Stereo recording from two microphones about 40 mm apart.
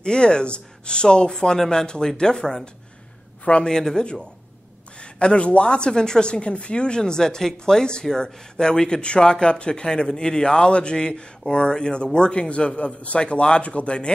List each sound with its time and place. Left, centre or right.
0.0 s a woman's voice: left